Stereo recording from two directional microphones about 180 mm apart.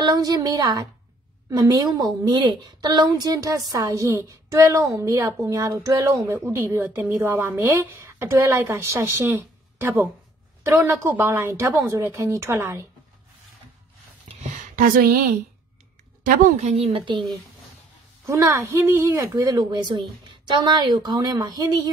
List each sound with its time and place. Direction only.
0.0 s a woman's voice: 20° right (ahead or behind)
14.2 s a sound: 45° right (ahead or behind)
16.3 s a woman's voice: 45° right (ahead or behind)
18.2 s a woman's voice: 15° right (ahead or behind)